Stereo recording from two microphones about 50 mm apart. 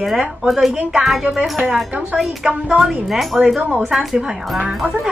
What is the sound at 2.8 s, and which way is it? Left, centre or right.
Speech, centre.